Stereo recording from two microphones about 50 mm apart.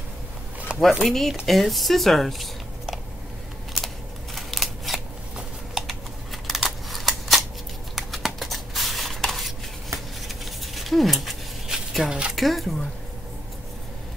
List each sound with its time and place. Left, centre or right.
0.7 s a sound: right
1.0 s speech: centre
3.7 s scissors: centre
5.8 s a sound: centre
12.1 s speech: centre
12.4 s speech: centre